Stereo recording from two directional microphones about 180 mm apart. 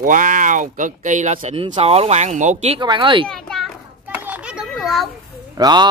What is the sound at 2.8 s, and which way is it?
Speech, 25° right (ahead or behind).